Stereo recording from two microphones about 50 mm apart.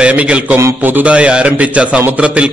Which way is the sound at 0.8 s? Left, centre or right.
Right.